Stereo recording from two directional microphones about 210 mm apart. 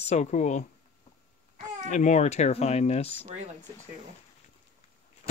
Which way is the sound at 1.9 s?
35° left (ahead or behind).